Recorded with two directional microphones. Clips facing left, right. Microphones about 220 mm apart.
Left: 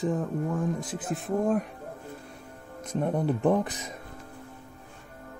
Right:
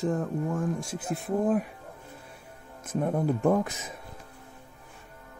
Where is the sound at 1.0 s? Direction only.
60° right (ahead or behind).